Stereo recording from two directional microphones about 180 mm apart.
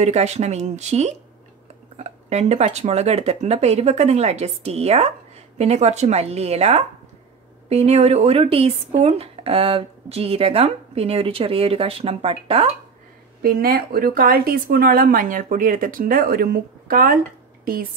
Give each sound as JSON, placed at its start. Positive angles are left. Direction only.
{"t": 0.0, "sound": "speech", "side_deg": -40}
{"t": 13.4, "sound": "a woman's voice", "side_deg": -55}